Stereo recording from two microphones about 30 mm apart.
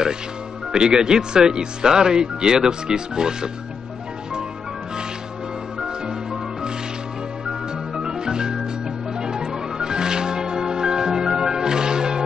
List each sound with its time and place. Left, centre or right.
0.7 s speech: right
7.4 s music: right